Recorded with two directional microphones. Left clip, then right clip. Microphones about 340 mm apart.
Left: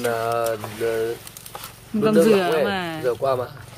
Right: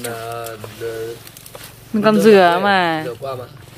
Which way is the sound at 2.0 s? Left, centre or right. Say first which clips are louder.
Right 6 dB; centre.